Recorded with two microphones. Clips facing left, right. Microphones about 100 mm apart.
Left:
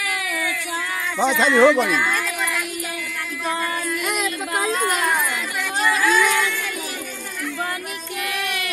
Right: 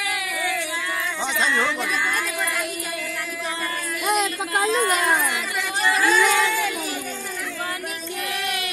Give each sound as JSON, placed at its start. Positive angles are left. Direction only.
{"t": 1.2, "sound": "speech", "side_deg": 90}
{"t": 4.0, "sound": "music", "side_deg": -30}
{"t": 6.0, "sound": "a sound", "side_deg": -30}